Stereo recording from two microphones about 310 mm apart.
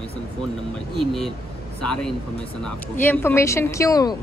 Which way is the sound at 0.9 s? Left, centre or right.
Centre.